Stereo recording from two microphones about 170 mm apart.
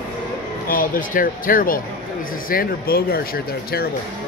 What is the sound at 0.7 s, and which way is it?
Speech, 55° left (ahead or behind).